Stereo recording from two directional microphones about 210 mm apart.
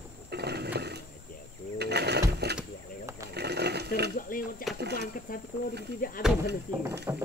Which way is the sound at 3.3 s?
50° right (ahead or behind).